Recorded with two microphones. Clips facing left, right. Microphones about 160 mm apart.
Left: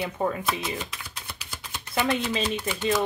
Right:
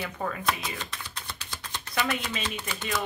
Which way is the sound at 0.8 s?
10° left (ahead or behind).